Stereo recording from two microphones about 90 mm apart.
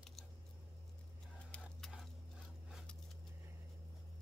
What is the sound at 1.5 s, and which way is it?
Tick-tock, 15° left (ahead or behind).